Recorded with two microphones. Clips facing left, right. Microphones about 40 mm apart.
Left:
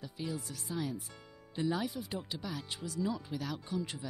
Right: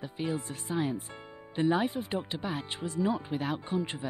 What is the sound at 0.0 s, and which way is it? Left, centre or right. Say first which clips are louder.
Speech: right 6 dB; right.